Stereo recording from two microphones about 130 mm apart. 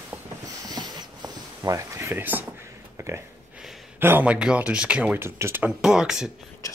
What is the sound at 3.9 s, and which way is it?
Speech, 15° right (ahead or behind).